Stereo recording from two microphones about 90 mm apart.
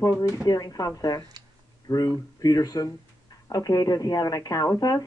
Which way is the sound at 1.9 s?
45° left (ahead or behind).